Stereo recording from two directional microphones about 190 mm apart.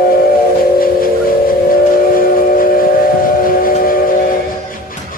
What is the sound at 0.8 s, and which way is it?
Train, 50° left (ahead or behind).